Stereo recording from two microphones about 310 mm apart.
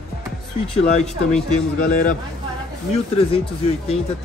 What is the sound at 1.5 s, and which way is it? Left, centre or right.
Speech, left.